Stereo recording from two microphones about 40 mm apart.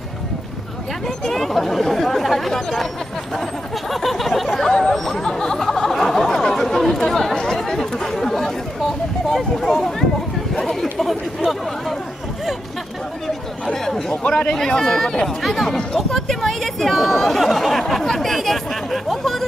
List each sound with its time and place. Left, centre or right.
1.0 s speech: centre
3.9 s speech: centre
5.6 s chatter: centre
9.3 s speech: centre
10.5 s chatter: centre
10.8 s speech: centre
13.7 s a sound: centre
14.3 s speech: centre